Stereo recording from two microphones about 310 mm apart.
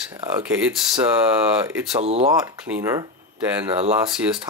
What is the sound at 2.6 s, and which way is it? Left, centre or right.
Speech, centre.